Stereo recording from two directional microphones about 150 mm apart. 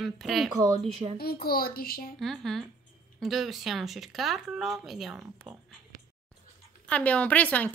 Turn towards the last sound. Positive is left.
turn(degrees=10)  # may be behind; listen again after turning